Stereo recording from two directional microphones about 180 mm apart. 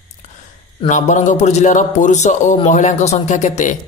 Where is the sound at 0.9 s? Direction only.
45° left (ahead or behind).